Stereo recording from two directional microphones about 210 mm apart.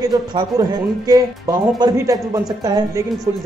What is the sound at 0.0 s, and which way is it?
Speech, 20° right (ahead or behind).